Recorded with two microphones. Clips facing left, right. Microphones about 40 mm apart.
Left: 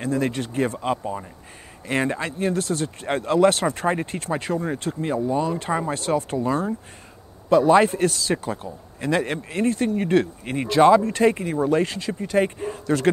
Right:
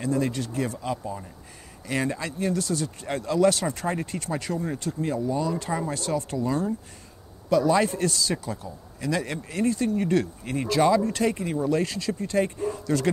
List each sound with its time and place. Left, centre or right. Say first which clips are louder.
0.0 s a man's voice: left 2 dB; left